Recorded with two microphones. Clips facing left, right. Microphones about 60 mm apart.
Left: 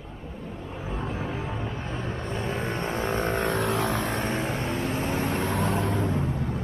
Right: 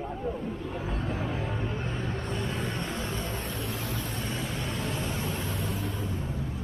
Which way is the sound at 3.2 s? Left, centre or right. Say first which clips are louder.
Left 9 dB; left.